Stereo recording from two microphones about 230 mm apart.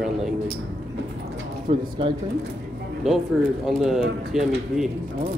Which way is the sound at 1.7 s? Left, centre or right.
Right.